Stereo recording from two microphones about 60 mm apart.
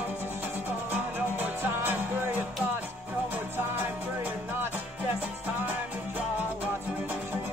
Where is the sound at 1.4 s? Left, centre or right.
Right.